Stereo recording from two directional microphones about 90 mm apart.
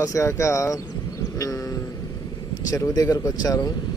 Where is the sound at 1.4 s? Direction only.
35° left (ahead or behind).